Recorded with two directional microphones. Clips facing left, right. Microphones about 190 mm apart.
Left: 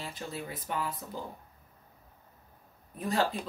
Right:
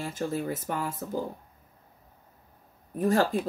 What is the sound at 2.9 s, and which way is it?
Speech, 45° right (ahead or behind).